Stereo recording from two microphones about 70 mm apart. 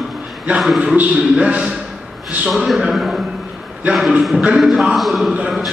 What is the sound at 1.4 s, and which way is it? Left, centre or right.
Speech, centre.